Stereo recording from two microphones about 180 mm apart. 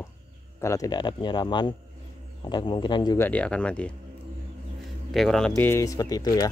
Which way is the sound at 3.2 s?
5° left (ahead or behind).